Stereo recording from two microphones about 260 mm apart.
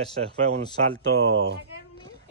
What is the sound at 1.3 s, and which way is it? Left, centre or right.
Speech, right.